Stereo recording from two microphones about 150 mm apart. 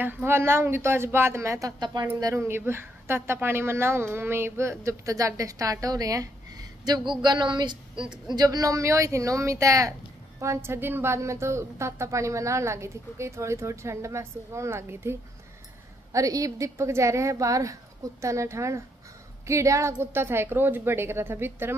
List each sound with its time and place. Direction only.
0.0 s a woman's voice: 15° right (ahead or behind)